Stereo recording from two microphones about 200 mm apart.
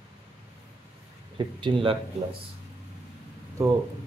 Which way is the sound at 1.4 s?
25° right (ahead or behind).